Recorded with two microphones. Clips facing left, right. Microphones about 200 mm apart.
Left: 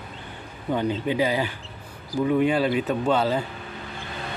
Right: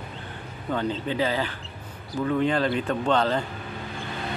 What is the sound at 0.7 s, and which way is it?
Speech, 15° left (ahead or behind).